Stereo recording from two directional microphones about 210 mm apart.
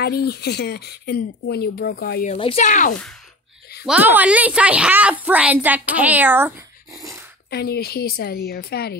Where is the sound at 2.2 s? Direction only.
30° left (ahead or behind).